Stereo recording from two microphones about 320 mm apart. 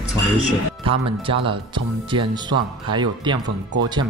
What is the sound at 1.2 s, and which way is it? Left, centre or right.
Speech, centre.